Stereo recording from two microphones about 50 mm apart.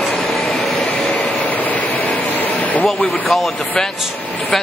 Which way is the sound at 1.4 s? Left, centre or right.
Left.